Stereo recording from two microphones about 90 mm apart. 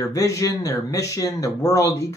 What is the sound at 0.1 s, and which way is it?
Speech, 35° left (ahead or behind).